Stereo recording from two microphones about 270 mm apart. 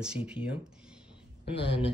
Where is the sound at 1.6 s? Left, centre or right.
Centre.